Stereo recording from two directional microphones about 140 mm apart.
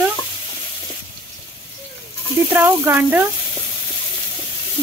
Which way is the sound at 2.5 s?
15° right (ahead or behind).